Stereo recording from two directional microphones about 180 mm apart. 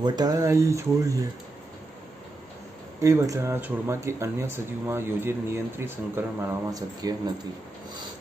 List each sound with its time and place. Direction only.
0.0 s speech: 20° right (ahead or behind)
3.0 s speech: 15° right (ahead or behind)